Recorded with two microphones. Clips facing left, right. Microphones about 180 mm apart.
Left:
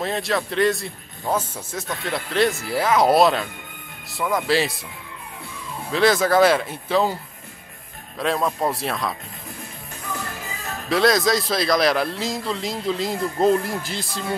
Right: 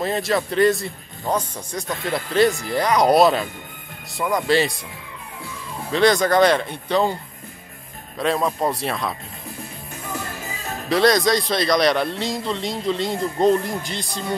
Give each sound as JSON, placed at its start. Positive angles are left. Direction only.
{"t": 0.0, "sound": "a man's voice", "side_deg": 0}
{"t": 5.9, "sound": "a man's voice", "side_deg": 0}
{"t": 8.2, "sound": "a man's voice", "side_deg": 0}
{"t": 10.9, "sound": "a man's voice", "side_deg": 0}